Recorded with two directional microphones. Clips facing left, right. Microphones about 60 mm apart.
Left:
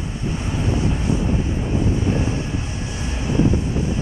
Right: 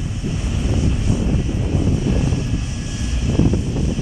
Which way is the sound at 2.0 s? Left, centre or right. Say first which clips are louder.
Right 1 dB; left.